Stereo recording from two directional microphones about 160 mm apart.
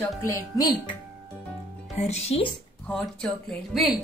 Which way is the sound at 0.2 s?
25° left (ahead or behind).